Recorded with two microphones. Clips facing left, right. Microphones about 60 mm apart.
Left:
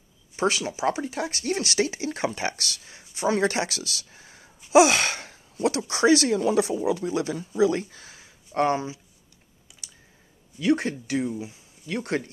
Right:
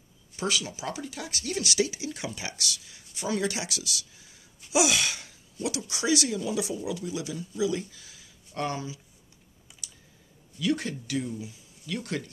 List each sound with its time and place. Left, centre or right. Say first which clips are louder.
0.4 s speech: left 6 dB; left
10.6 s speech: left 5 dB; left